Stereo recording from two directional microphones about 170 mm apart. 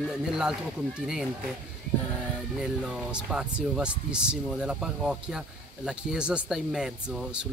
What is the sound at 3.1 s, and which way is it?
Speech, 5° right (ahead or behind).